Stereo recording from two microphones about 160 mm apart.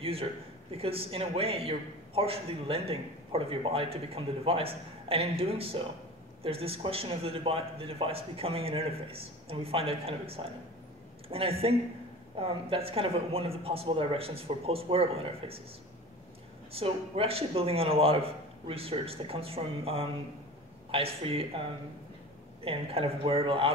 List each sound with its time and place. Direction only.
0.0 s a man's voice: 35° right (ahead or behind)
16.7 s a man's voice: 35° right (ahead or behind)
22.7 s a man's voice: 35° right (ahead or behind)